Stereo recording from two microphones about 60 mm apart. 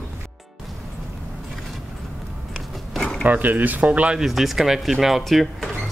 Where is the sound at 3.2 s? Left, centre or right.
Right.